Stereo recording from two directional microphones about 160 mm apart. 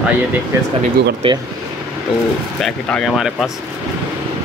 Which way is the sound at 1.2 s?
35° right (ahead or behind).